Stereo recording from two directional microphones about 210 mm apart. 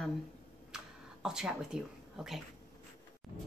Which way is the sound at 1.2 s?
5° right (ahead or behind).